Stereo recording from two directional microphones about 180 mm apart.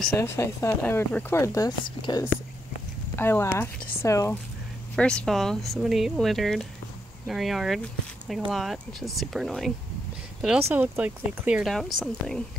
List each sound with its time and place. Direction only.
0.2 s speech: 15° left (ahead or behind)
3.2 s speech: 10° left (ahead or behind)
4.9 s speech: 5° left (ahead or behind)
10.7 s speech: 10° right (ahead or behind)